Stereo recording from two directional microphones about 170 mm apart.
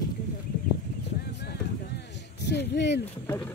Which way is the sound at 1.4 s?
80° left.